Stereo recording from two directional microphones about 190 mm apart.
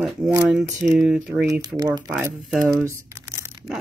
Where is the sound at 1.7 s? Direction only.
20° right (ahead or behind).